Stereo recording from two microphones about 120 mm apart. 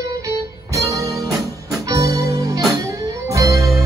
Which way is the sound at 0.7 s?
25° right (ahead or behind).